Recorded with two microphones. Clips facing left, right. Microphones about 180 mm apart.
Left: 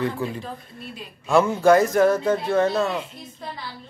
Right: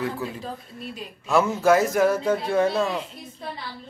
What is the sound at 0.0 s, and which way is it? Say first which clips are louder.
Speech: left 3 dB; 5° right (ahead or behind).